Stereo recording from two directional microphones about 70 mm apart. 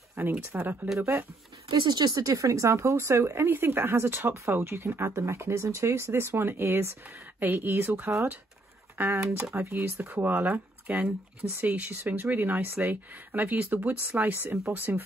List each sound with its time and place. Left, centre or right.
0.3 s speech: right
1.7 s speech: right
2.2 s speech: right